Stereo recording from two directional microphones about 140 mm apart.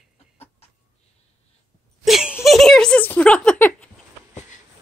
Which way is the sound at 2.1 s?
5° right (ahead or behind).